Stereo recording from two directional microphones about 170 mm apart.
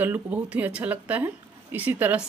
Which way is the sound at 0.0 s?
10° right (ahead or behind).